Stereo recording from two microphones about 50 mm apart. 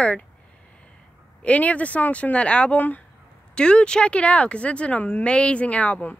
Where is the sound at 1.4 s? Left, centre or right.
Left.